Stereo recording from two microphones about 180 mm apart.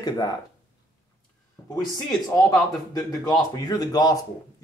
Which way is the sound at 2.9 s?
20° left (ahead or behind).